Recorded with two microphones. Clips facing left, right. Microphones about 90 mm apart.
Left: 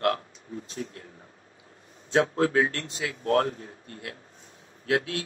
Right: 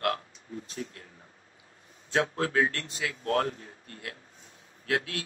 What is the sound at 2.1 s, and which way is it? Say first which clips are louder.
A man's voice: left 5 dB; 20° left (ahead or behind).